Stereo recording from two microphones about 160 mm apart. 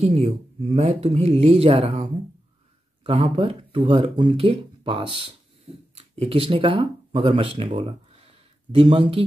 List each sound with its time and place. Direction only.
0.0 s speech: 40° right (ahead or behind)